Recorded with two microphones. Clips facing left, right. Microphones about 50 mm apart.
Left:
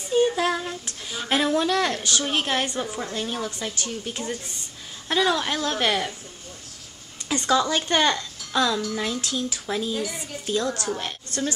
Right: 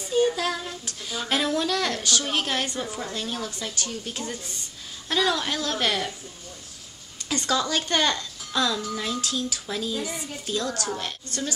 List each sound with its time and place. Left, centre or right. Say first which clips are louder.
0.4 s child singing: left 4 dB; left
1.1 s a woman's voice: left 3 dB; centre
2.8 s a woman's voice: left 2 dB; centre
7.2 s a woman's voice: left 4 dB; centre